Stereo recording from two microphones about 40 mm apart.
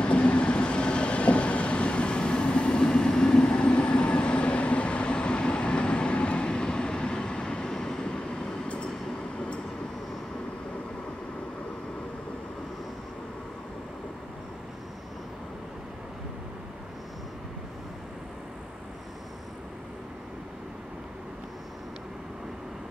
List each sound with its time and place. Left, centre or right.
0.0 s vehicle: left